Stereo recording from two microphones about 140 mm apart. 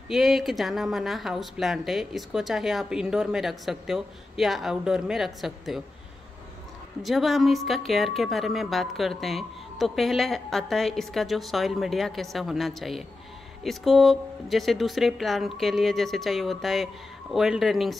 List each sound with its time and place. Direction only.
0.1 s a woman's voice: centre (ahead or behind)
7.0 s a woman's voice: centre (ahead or behind)